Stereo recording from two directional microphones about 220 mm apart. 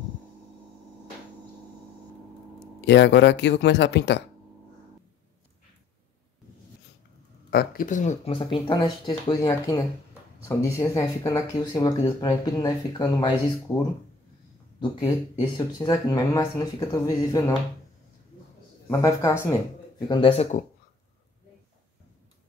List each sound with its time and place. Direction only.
2.8 s speech: 50° left (ahead or behind)
7.5 s speech: 40° left (ahead or behind); by 13.3 s 20° left (ahead or behind)
14.8 s speech: 20° left (ahead or behind)
18.9 s speech: 15° left (ahead or behind)